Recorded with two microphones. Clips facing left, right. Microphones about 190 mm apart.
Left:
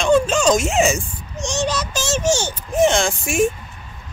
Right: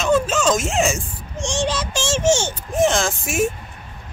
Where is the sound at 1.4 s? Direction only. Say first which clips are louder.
Even; 30° right (ahead or behind).